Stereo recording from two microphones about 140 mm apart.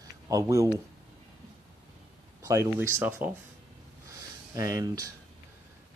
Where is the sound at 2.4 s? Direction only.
20° right (ahead or behind).